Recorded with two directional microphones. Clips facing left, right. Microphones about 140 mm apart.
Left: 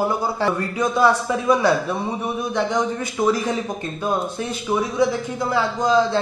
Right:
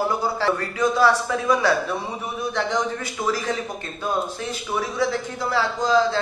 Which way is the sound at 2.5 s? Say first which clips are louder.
Left 3 dB; 20° left (ahead or behind).